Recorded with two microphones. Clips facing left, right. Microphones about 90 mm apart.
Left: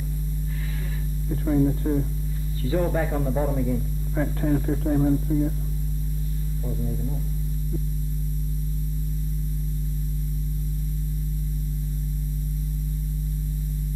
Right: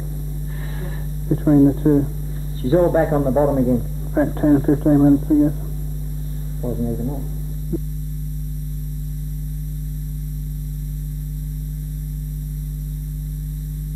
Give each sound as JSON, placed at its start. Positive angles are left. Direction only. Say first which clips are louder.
{"t": 1.3, "sound": "a man's voice", "louder": "right 9 dB", "side_deg": -35}
{"t": 6.6, "sound": "a man's voice", "louder": "right 9 dB", "side_deg": -35}
{"t": 7.7, "sound": "hum", "louder": "right 9 dB", "side_deg": -30}